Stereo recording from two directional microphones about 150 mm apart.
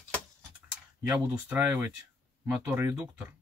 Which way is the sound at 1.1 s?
10° right (ahead or behind).